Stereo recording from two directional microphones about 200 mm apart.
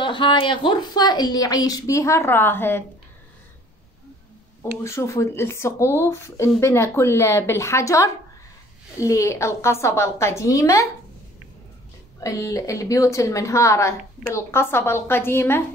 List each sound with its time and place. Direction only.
0.0 s a woman's voice: 25° left (ahead or behind)
4.8 s speech: 15° left (ahead or behind)
12.2 s speech: 15° left (ahead or behind)